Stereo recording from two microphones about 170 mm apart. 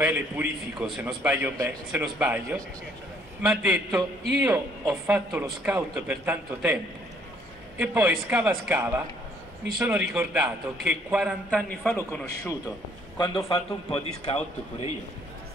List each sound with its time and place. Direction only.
0.0 s a man's voice: 10° right (ahead or behind)
7.8 s a man's voice: 10° right (ahead or behind)
11.9 s a man's voice: 15° left (ahead or behind)
13.5 s a man's voice: 35° left (ahead or behind)